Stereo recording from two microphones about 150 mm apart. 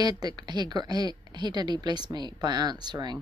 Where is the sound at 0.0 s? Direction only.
25° right (ahead or behind).